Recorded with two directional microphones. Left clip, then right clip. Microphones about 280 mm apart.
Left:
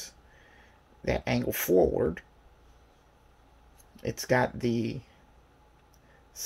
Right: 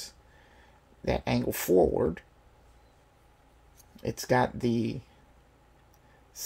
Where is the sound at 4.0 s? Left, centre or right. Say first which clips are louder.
Even; centre.